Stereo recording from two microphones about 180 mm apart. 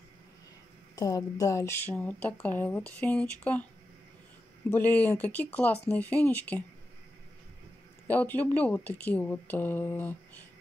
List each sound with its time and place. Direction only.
0.9 s speech: 20° left (ahead or behind)
4.6 s speech: 10° left (ahead or behind)
8.1 s speech: 10° left (ahead or behind)